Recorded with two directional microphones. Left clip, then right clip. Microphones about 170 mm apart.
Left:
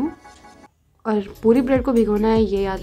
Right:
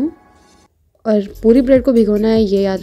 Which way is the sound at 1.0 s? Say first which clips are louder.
Right 5 dB; 45° right (ahead or behind).